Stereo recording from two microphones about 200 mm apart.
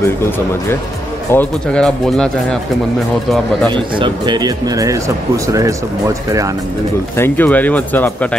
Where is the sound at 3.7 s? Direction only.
20° right (ahead or behind).